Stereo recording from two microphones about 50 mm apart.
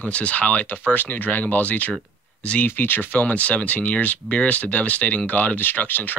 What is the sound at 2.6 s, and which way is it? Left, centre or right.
A man's voice, left.